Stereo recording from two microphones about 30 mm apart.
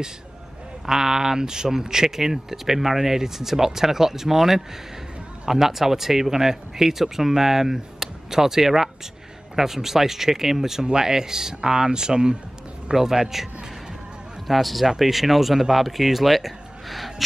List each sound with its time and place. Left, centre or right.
0.8 s speech: centre
12.9 s speech: centre
14.5 s speech: centre